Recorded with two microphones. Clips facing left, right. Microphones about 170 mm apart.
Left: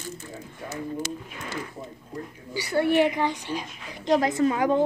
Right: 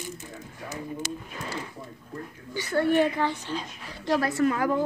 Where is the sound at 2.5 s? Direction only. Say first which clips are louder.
Left 1 dB; 10° left (ahead or behind).